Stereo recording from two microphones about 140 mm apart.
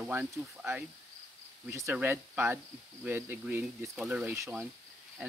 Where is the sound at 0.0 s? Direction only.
10° right (ahead or behind).